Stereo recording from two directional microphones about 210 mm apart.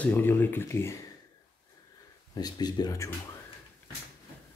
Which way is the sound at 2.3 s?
20° left (ahead or behind).